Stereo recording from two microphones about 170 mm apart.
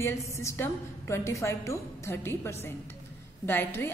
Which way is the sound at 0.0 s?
15° left (ahead or behind).